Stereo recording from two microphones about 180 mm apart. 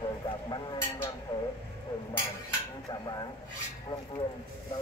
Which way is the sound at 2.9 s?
20° left (ahead or behind).